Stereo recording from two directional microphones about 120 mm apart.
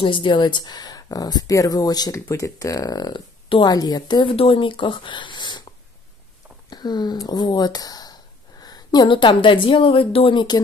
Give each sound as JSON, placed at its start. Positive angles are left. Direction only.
{"t": 0.0, "sound": "speech", "side_deg": 45}
{"t": 6.7, "sound": "speech", "side_deg": 35}